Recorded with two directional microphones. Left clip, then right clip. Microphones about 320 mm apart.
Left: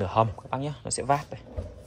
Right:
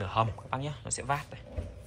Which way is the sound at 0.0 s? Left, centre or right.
Centre.